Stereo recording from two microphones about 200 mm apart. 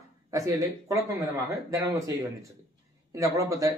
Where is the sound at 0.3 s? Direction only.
15° right (ahead or behind).